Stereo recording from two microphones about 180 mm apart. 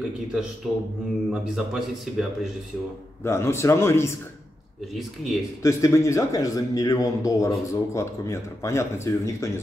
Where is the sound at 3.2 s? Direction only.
15° left (ahead or behind).